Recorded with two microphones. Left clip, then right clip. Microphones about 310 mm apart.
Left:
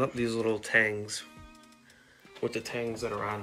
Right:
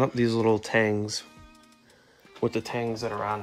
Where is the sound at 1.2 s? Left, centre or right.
Centre.